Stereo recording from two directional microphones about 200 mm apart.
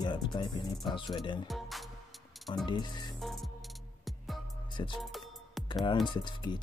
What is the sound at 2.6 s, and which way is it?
Speech, 20° left (ahead or behind).